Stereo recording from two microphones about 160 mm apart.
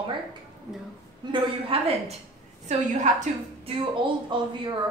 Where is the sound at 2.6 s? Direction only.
50° right (ahead or behind).